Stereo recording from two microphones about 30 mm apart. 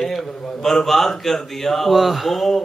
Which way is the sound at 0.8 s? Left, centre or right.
Centre.